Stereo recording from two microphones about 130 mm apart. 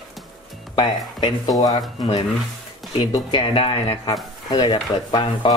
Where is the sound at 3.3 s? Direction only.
45° left (ahead or behind).